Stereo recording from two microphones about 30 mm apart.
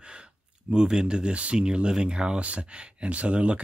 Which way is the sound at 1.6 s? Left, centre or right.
Right.